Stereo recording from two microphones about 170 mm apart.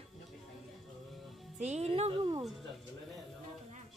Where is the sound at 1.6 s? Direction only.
40° right (ahead or behind).